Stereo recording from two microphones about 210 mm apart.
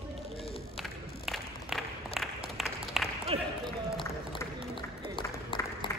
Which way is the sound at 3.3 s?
25° right (ahead or behind).